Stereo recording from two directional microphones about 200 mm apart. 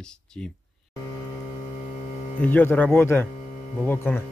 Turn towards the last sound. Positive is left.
turn(degrees=10)  # may be behind; listen again after turning